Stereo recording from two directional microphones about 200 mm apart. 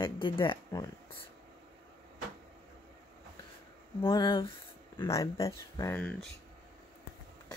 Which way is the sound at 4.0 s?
15° left (ahead or behind).